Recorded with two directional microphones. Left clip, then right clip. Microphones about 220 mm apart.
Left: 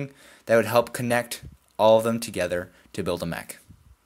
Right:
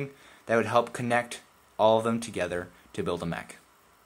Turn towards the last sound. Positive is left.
turn(degrees=20)  # may be behind; listen again after turning